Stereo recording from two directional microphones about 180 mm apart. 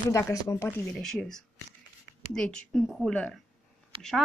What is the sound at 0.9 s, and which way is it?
A woman's voice, 5° left (ahead or behind).